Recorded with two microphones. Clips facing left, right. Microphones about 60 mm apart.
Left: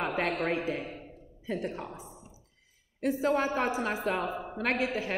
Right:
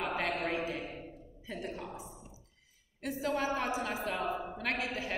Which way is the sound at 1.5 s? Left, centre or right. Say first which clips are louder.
Left 7 dB; left.